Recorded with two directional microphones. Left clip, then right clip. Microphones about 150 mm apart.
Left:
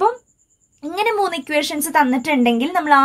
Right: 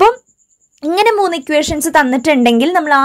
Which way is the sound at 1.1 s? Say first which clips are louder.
Right 6 dB; 40° right (ahead or behind).